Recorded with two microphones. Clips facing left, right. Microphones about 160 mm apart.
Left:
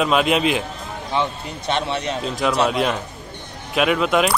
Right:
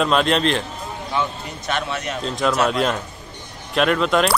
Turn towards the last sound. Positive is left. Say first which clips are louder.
# even
turn(degrees=5)  # may be behind; listen again after turning